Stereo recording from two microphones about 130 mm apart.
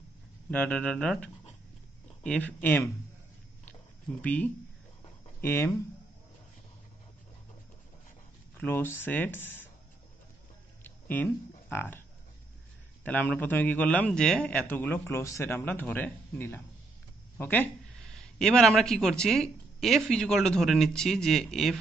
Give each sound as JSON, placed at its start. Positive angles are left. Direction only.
{"t": 0.5, "sound": "a man's voice", "side_deg": 10}
{"t": 3.6, "sound": "a sound", "side_deg": 10}
{"t": 5.4, "sound": "a man's voice", "side_deg": 20}
{"t": 8.5, "sound": "a man's voice", "side_deg": 15}
{"t": 10.8, "sound": "a sound", "side_deg": 15}
{"t": 11.7, "sound": "a man's voice", "side_deg": 15}
{"t": 13.0, "sound": "a man's voice", "side_deg": 10}